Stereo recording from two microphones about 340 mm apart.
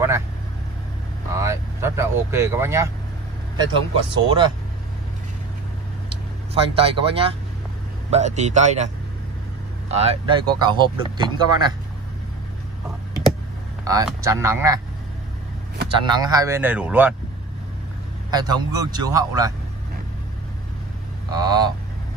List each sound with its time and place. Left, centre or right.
1.3 s speech: centre
6.0 s vehicle: centre
8.1 s a man's voice: centre
13.8 s speech: centre
16.1 s speech: centre
18.3 s speech: centre
21.3 s speech: centre